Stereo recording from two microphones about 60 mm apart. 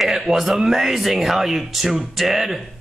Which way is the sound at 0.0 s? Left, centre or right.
Centre.